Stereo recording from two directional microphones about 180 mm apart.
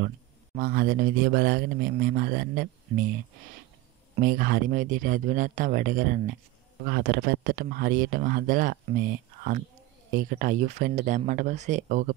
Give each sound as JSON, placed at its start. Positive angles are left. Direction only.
{"t": 0.6, "sound": "speech", "side_deg": -55}
{"t": 4.2, "sound": "speech", "side_deg": -50}